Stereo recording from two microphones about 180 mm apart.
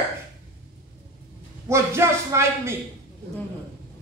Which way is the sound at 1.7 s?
15° right (ahead or behind).